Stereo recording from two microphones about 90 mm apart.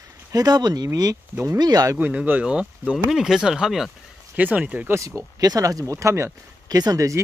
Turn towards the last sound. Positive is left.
turn(degrees=-35)  # may be behind; listen again after turning